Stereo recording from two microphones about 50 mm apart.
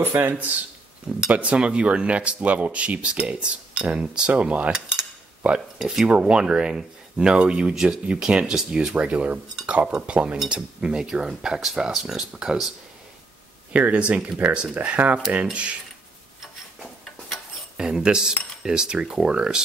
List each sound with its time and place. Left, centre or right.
0.0 s speech: right
1.3 s speech: right
4.7 s cutlery: centre
5.4 s speech: right
8.9 s speech: right
13.9 s speech: right
17.7 s speech: centre